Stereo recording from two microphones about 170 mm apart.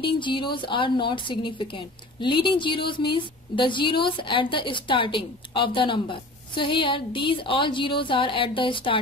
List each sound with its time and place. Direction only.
0.0 s a woman's voice: 30° left (ahead or behind)